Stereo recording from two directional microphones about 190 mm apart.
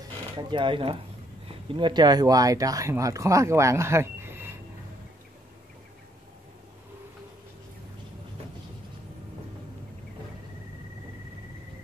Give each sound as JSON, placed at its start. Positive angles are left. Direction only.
{"t": 0.4, "sound": "speech", "side_deg": -25}